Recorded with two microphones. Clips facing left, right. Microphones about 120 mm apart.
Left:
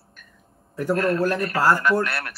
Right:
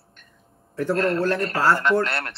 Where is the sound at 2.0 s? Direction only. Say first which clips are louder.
Right 1 dB; 25° right (ahead or behind).